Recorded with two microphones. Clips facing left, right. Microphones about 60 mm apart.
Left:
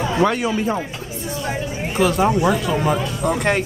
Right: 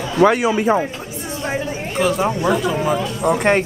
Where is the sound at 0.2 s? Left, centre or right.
Centre.